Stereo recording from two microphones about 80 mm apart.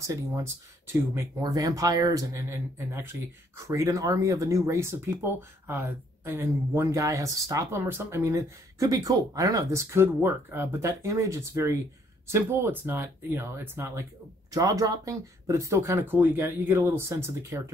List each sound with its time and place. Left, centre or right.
0.0 s speech: right
1.4 s speech: right
2.5 s speech: right
14.5 s speech: right